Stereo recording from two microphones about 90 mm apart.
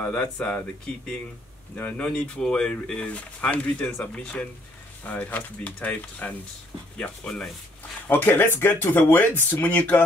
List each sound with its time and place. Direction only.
0.0 s speech: 15° left (ahead or behind)
1.8 s speech: 15° left (ahead or behind)
8.1 s speech: 20° left (ahead or behind)